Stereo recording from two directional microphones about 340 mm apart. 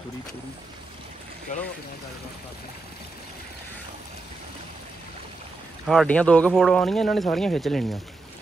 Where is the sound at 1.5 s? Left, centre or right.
Left.